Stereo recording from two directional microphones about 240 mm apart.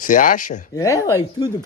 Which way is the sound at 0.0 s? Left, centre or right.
Left.